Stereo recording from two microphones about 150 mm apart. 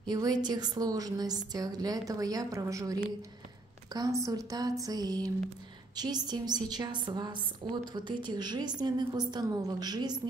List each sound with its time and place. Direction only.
0.0 s a woman's voice: 30° right (ahead or behind)